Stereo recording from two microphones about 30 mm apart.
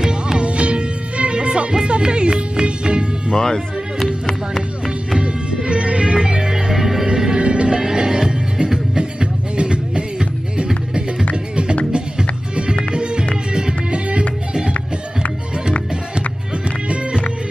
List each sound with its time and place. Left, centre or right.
0.0 s music: right
0.4 s music: right
3.3 s speech: left
5.7 s music: right
6.5 s music: centre
7.2 s music: right
7.7 s music: right
11.9 s music: right
13.9 s music: right